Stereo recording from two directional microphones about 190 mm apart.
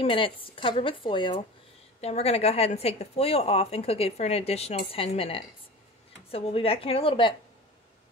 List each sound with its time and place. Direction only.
0.0 s a woman's voice: 30° left (ahead or behind)